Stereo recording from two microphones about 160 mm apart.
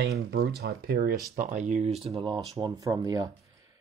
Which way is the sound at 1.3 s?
50° right (ahead or behind).